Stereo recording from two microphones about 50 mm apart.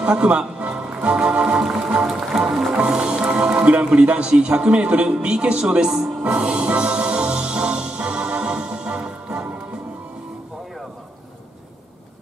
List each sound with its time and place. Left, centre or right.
0.0 s speech: right; by 2.4 s centre
2.7 s a man's voice: centre
5.9 s speech: centre
6.3 s music: right